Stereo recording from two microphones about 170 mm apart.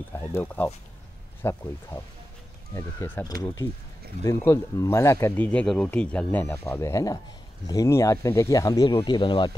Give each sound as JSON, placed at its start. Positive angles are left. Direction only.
{"t": 0.1, "sound": "speech", "side_deg": 15}